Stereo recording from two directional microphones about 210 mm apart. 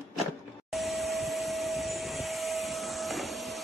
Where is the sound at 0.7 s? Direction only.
Centre (ahead or behind).